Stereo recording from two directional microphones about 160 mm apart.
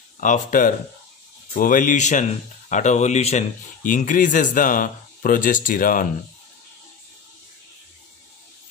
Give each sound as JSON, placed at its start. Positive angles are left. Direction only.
{"t": 0.2, "sound": "speech", "side_deg": 55}